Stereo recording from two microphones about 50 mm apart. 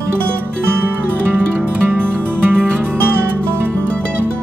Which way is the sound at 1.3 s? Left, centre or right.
Right.